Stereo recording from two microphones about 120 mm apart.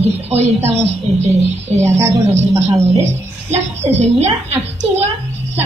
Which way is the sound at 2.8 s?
65° right (ahead or behind).